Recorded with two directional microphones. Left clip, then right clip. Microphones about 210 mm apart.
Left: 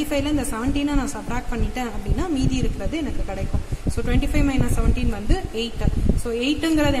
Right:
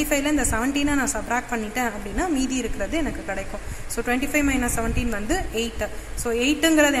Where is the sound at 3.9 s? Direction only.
5° left (ahead or behind).